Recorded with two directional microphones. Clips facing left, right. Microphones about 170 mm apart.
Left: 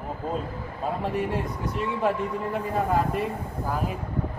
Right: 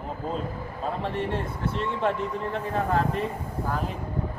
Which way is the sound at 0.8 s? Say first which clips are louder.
Left 2 dB; 10° left (ahead or behind).